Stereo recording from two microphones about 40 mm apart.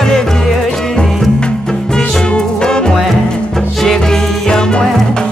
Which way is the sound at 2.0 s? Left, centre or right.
Centre.